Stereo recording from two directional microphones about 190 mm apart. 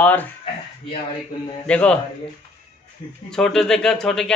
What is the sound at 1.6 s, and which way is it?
Speech, 5° left (ahead or behind).